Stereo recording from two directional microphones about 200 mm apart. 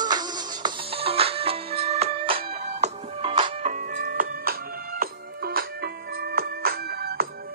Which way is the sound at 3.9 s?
45° right (ahead or behind).